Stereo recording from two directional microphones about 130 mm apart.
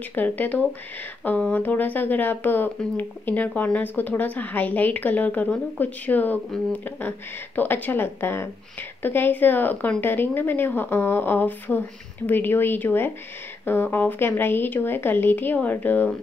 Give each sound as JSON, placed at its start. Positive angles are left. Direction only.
{"t": 0.1, "sound": "speech", "side_deg": 15}